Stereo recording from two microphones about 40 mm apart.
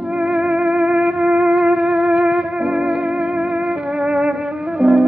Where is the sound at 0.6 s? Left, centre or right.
Right.